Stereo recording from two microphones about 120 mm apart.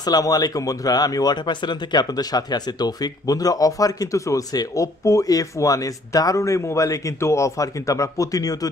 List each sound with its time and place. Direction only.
0.0 s speech: 30° left (ahead or behind)